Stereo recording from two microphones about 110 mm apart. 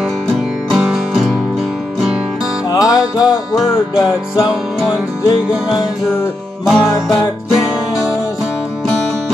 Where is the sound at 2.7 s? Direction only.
35° left (ahead or behind).